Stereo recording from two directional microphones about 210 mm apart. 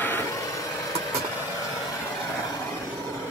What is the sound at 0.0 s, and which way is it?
Vehicle, 10° left (ahead or behind).